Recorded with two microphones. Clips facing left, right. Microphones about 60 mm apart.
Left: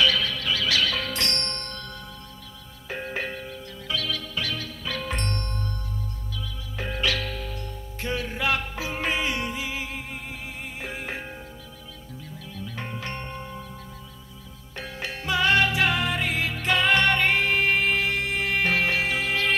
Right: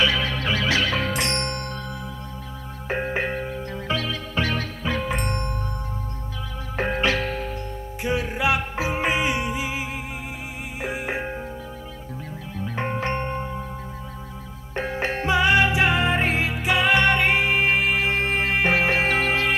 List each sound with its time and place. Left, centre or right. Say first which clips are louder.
0.0 s music: right 1 dB; right
2.9 s music: right 6 dB; right
5.1 s marimba: right 4 dB; centre
6.8 s music: right 5 dB; right
8.0 s music: right 4 dB; centre
12.5 s music: right 9 dB; right
14.8 s music: right 9 dB; right
15.3 s music: right 2 dB; centre
16.6 s music: right 2 dB; centre; by 19.4 s right